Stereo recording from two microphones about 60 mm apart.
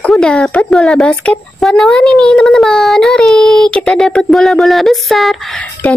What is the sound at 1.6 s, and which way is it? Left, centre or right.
A child's voice, centre.